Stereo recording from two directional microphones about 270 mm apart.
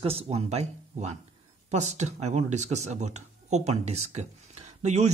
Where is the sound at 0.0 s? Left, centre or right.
Right.